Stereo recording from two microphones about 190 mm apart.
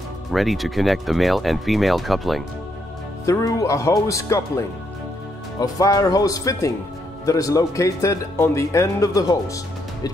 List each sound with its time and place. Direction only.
0.3 s speech: centre (ahead or behind)
3.3 s speech: 15° left (ahead or behind)